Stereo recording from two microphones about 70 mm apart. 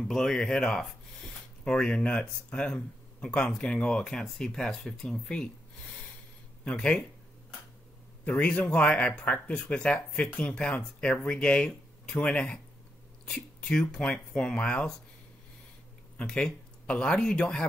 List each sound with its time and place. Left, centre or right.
0.1 s speech: centre
8.3 s speech: centre
16.2 s speech: centre